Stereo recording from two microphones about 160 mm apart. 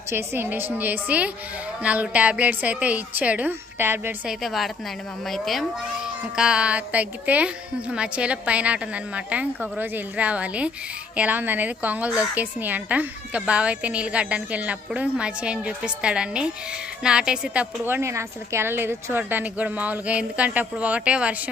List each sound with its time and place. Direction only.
0.1 s a woman's voice: 15° right (ahead or behind)
4.3 s a woman's voice: centre (ahead or behind)